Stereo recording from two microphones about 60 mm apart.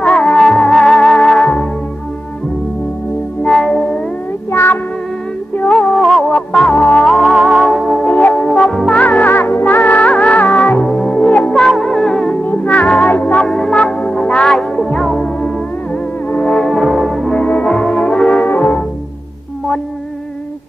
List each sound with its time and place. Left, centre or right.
0.2 s music: centre
3.4 s music: centre
4.5 s meow: left
5.7 s music: centre
8.0 s music: left
9.2 s music: left
11.5 s music: centre
12.4 s music: left
13.4 s music: centre
15.1 s music: left
16.6 s brass instrument: centre
17.3 s brass instrument: left
18.4 s brass instrument: left